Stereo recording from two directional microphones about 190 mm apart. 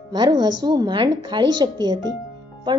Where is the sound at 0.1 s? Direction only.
20° right (ahead or behind).